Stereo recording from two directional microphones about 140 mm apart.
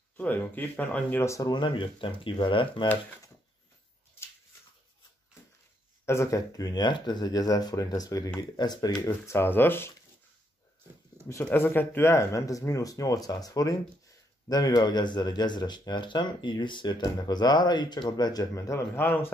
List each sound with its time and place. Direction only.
0.2 s speech: 10° left (ahead or behind); by 2.9 s 35° left (ahead or behind)
6.0 s speech: 20° left (ahead or behind)
11.5 s speech: 15° left (ahead or behind)